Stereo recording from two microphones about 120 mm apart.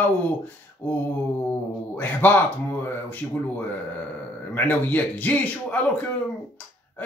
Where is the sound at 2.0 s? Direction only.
15° left (ahead or behind).